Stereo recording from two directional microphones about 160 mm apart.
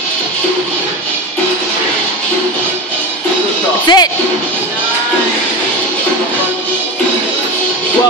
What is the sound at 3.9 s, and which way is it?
Speech, 25° left (ahead or behind).